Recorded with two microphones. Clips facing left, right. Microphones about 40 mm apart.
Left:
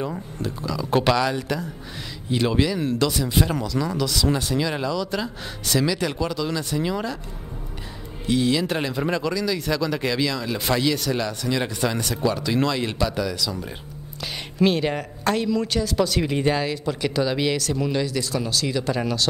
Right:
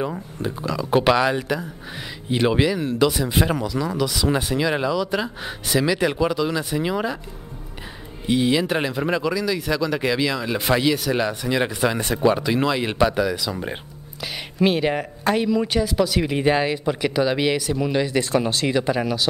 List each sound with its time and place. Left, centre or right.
0.4 s speech: centre
8.3 s speech: centre
12.9 s speech: right; by 16.4 s centre
16.4 s speech: right
18.0 s speech: right
18.9 s speech: centre